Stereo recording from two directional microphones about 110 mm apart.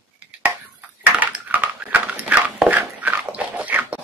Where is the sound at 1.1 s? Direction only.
15° right (ahead or behind).